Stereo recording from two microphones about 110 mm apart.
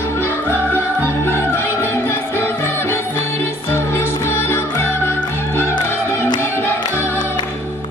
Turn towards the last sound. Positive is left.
turn(degrees=20)  # may be behind; listen again after turning